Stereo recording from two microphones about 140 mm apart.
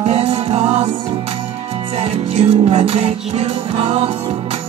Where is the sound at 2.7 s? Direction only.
45° right (ahead or behind).